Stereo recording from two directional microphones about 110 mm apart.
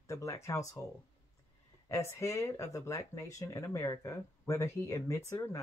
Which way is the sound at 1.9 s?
25° left (ahead or behind).